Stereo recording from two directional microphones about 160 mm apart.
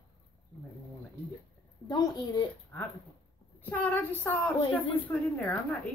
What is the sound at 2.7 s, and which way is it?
A woman's voice, 15° left (ahead or behind).